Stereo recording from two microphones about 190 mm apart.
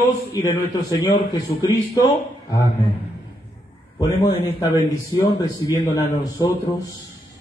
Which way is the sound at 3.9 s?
20° left (ahead or behind).